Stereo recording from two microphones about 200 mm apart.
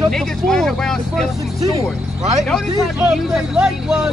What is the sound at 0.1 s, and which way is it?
Vehicle, centre (ahead or behind).